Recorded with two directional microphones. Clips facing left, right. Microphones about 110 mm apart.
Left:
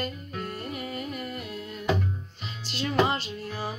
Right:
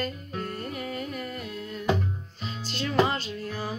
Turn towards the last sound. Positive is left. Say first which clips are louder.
# even
turn(degrees=5)  # may be behind; listen again after turning